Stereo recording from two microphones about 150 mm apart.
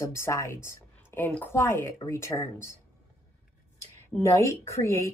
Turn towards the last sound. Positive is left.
turn(degrees=20)  # may be behind; listen again after turning